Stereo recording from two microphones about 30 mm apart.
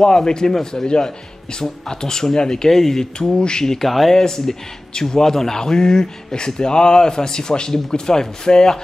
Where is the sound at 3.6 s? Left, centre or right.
Centre.